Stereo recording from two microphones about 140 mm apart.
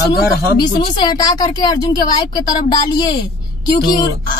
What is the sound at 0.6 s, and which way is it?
A woman's voice, 35° left (ahead or behind).